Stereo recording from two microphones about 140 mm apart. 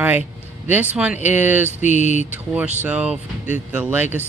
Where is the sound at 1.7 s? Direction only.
55° left (ahead or behind).